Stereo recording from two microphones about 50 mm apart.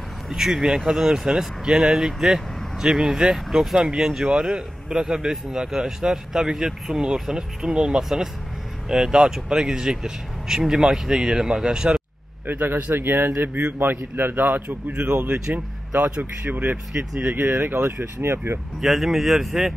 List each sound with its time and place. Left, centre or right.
0.3 s speech: centre
12.4 s a man's voice: right
18.8 s speech: centre